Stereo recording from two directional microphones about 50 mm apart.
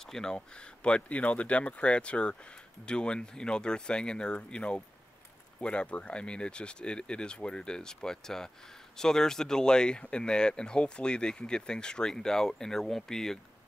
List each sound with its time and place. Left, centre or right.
0.0 s speech: centre